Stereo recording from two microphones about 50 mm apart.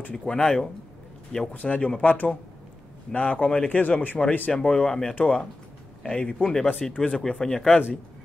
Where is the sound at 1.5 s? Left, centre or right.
Left.